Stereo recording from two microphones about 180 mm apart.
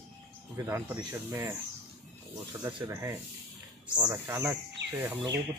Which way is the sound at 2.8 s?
15° right (ahead or behind).